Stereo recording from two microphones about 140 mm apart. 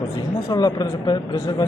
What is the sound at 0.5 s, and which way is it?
A man's voice, 30° left (ahead or behind).